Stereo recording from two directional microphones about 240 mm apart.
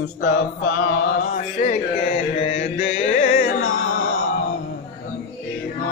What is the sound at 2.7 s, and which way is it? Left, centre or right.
Music, left.